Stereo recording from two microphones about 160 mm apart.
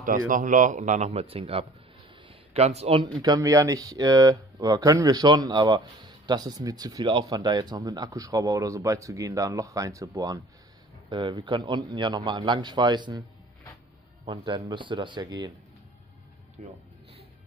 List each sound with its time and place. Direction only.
0.0 s a man's voice: 55° right (ahead or behind); by 3.1 s 40° right (ahead or behind)
3.2 s speech: 20° right (ahead or behind)
14.2 s speech: 30° right (ahead or behind)
16.6 s a man's voice: 50° right (ahead or behind)